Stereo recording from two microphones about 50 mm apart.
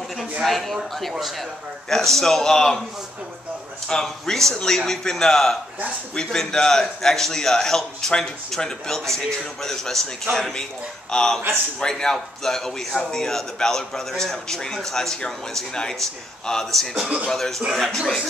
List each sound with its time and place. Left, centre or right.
0.4 s speech: centre
1.9 s a man's voice: centre
3.9 s a man's voice: centre